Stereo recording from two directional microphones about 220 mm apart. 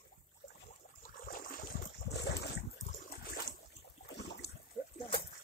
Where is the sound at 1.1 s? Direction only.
40° left (ahead or behind).